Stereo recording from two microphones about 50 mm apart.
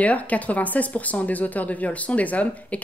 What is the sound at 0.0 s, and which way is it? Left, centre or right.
Speech, left.